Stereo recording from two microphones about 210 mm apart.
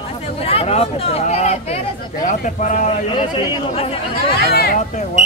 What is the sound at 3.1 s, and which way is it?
Speech, 20° left (ahead or behind).